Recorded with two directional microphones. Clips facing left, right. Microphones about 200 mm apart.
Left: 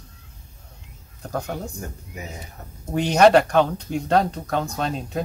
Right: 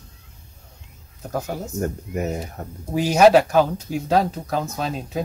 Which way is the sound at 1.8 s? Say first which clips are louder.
Right 11 dB; 60° right (ahead or behind).